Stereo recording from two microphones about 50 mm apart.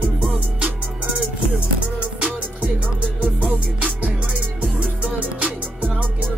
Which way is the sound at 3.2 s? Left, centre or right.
Right.